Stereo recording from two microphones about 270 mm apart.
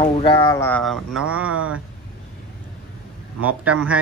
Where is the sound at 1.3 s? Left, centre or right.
Right.